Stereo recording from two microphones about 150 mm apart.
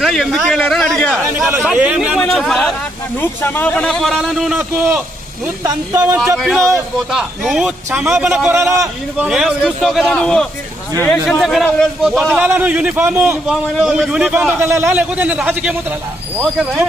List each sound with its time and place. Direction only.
0.0 s a man's voice: centre (ahead or behind)
1.6 s a man's voice: 10° right (ahead or behind)
3.2 s a man's voice: 15° left (ahead or behind); by 8.5 s 5° right (ahead or behind)
8.5 s a man's voice: 20° right (ahead or behind)
9.3 s a man's voice: centre (ahead or behind)